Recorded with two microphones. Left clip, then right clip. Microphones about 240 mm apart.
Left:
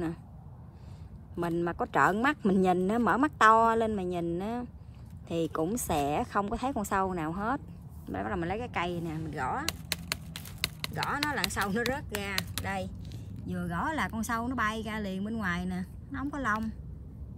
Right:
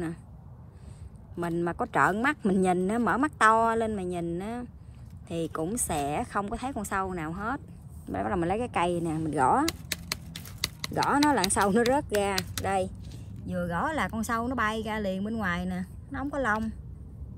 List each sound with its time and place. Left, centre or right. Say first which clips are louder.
1.3 s a woman's voice: right 1 dB; centre
8.1 s speech: right 5 dB; centre
10.9 s speech: right 9 dB; centre
15.0 s a woman's voice: right 5 dB; right
15.3 s speech: right 3 dB; centre